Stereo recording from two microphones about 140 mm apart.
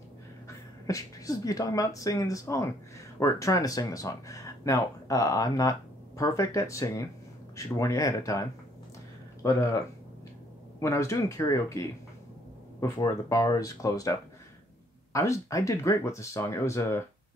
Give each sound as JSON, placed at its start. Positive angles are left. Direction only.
{"t": 0.5, "sound": "speech", "side_deg": 25}
{"t": 15.1, "sound": "speech", "side_deg": 20}